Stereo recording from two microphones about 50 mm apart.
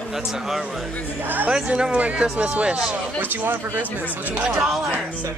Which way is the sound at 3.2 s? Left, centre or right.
Right.